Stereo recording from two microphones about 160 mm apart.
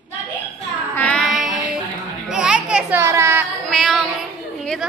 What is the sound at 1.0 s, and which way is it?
Child singing, 5° left (ahead or behind).